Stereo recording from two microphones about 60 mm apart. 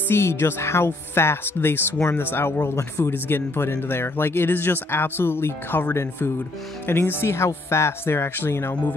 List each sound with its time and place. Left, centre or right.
0.1 s speech: left
2.6 s speech: left
3.0 s speech: left